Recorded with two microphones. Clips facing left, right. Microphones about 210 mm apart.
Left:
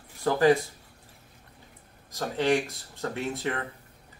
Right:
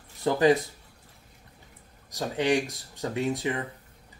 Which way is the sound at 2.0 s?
15° right (ahead or behind).